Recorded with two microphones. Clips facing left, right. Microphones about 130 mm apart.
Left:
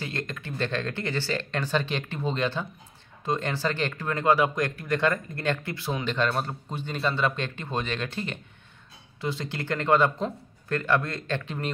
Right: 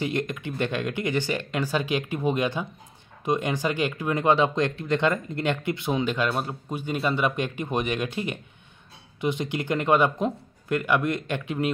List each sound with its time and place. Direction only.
0.0 s speech: 20° right (ahead or behind)
6.1 s speech: 10° right (ahead or behind)